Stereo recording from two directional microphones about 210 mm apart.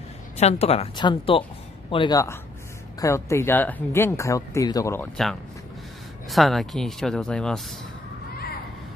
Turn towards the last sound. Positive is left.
turn(degrees=5)  # may be behind; listen again after turning